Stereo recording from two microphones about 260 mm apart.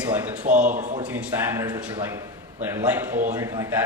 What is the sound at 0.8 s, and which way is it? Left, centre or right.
Speech, right.